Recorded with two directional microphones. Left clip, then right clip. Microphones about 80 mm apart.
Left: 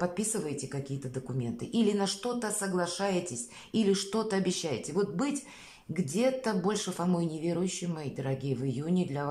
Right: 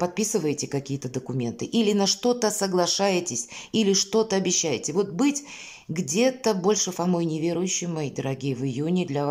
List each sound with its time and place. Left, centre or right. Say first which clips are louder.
0.0 s speech: right 8 dB; right
2.2 s speech: right 10 dB; right
3.1 s speech: right 7 dB; right